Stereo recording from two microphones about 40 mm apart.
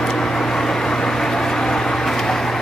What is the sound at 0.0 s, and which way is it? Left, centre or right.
Vehicle, centre.